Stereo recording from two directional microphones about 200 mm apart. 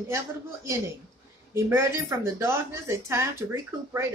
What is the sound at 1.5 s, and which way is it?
Speech, 15° right (ahead or behind).